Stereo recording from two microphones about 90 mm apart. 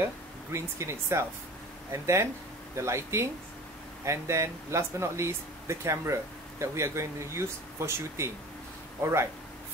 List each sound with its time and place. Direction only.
0.0 s speech: 30° right (ahead or behind)